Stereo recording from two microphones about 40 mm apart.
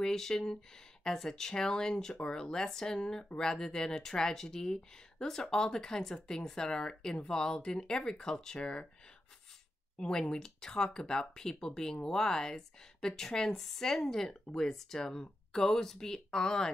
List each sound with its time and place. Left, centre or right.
0.0 s speech: centre
9.9 s speech: centre